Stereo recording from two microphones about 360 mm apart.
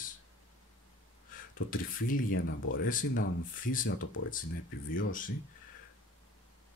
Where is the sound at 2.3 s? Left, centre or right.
Left.